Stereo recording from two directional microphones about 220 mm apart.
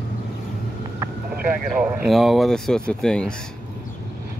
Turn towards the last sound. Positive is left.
turn(degrees=5)  # may be behind; listen again after turning